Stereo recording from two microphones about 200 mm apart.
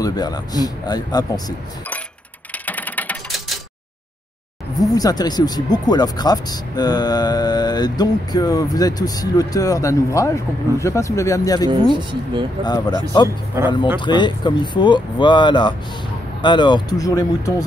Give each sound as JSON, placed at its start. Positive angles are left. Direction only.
{"t": 0.0, "sound": "speech", "side_deg": 20}
{"t": 2.6, "sound": "mechanisms", "side_deg": 10}
{"t": 4.9, "sound": "speech", "side_deg": 20}
{"t": 11.9, "sound": "speech", "side_deg": -25}
{"t": 12.6, "sound": "speech", "side_deg": 20}